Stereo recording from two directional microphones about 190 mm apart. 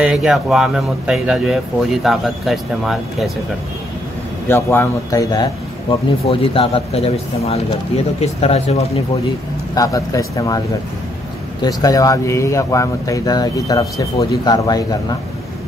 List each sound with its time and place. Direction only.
0.0 s speech: centre (ahead or behind)
4.5 s speech: 15° left (ahead or behind); by 8.8 s 35° left (ahead or behind)
9.8 s speech: 15° left (ahead or behind)
11.6 s speech: 20° left (ahead or behind)